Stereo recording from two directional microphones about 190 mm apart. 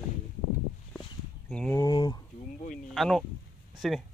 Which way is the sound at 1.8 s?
20° left (ahead or behind).